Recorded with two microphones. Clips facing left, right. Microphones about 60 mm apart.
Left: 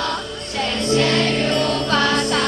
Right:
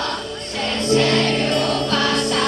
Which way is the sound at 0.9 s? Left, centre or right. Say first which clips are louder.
Right 1 dB; centre.